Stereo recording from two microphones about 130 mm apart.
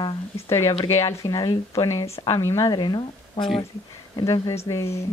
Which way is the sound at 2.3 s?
25° left (ahead or behind).